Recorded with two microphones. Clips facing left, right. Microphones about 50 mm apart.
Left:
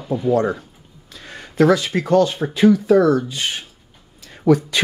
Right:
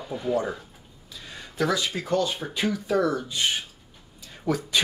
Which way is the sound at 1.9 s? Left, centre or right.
Left.